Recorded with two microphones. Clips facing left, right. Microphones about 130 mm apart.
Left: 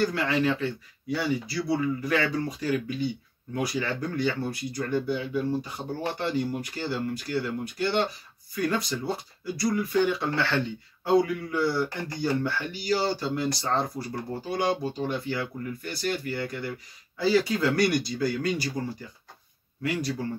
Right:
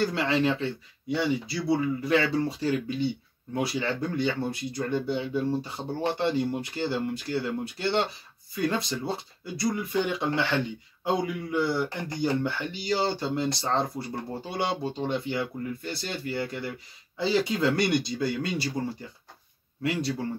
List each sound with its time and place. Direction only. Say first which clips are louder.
0.1 s speech: even; 25° right (ahead or behind)
19.8 s speech: right 1 dB; 25° right (ahead or behind)